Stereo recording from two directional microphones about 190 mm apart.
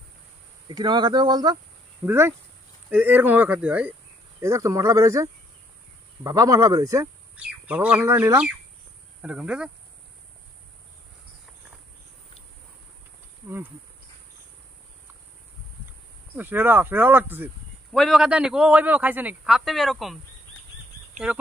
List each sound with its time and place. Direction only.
0.7 s speech: 25° right (ahead or behind)
7.3 s a man's voice: 5° right (ahead or behind)
16.3 s speech: 10° right (ahead or behind)
17.9 s a man's voice: centre (ahead or behind)